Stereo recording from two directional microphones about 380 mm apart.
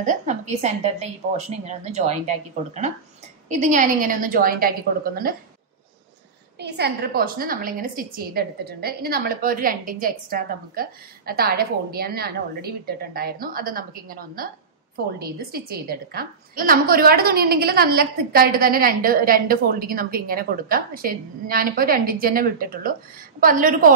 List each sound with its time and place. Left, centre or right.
0.0 s a woman's voice: centre
6.6 s a woman's voice: right